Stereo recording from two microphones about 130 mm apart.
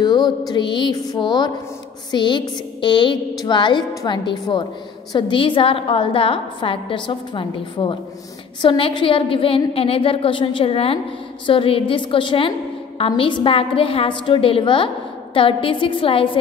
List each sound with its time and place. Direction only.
0.0 s music: 30° left (ahead or behind)
0.5 s a woman's voice: 35° left (ahead or behind)